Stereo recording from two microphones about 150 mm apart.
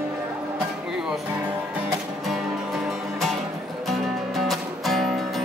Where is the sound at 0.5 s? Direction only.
5° right (ahead or behind).